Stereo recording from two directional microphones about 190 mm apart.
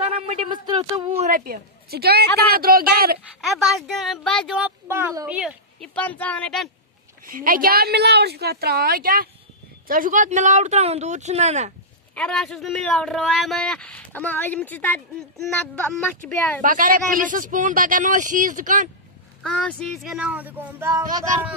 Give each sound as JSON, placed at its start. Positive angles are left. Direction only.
{"t": 0.1, "sound": "a sound", "side_deg": -30}
{"t": 1.3, "sound": "speech", "side_deg": -50}
{"t": 3.3, "sound": "a woman's voice", "side_deg": 0}
{"t": 5.9, "sound": "speech", "side_deg": 10}
{"t": 7.2, "sound": "speech", "side_deg": -45}
{"t": 12.2, "sound": "speech", "side_deg": 5}
{"t": 16.6, "sound": "speech", "side_deg": -45}
{"t": 19.4, "sound": "speech", "side_deg": 5}